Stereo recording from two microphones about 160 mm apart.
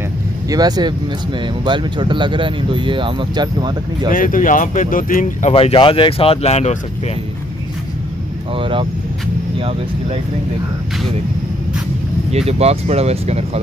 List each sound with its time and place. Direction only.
0.5 s speech: 25° right (ahead or behind)
4.1 s speech: 60° left (ahead or behind)
5.5 s speech: 35° left (ahead or behind)
8.5 s speech: 30° right (ahead or behind)
12.3 s speech: 40° right (ahead or behind)